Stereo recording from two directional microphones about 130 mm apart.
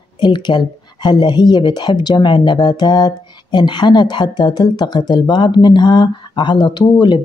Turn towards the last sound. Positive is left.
turn(degrees=35)  # may be behind; listen again after turning